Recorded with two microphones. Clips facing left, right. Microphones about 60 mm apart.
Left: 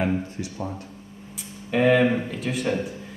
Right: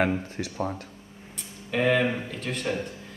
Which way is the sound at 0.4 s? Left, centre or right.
Right.